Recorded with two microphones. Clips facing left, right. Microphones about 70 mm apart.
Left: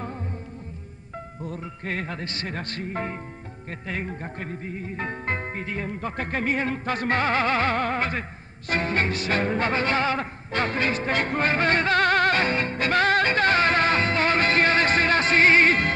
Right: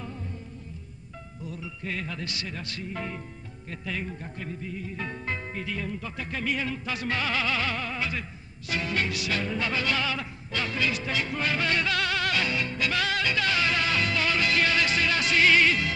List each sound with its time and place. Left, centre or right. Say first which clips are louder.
1.4 s music: left 2 dB; left